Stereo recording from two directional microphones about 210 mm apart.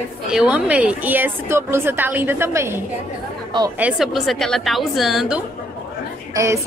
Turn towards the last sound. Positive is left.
turn(degrees=-15)  # may be behind; listen again after turning